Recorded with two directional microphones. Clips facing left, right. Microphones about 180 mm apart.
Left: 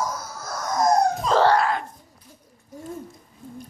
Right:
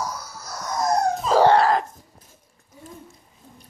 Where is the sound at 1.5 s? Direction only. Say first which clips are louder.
Right 4 dB; 35° right (ahead or behind).